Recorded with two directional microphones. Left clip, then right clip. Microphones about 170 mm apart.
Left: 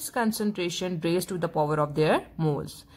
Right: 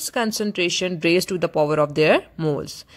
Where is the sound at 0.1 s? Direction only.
25° right (ahead or behind).